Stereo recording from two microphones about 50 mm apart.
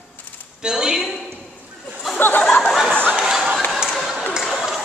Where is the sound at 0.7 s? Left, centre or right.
Centre.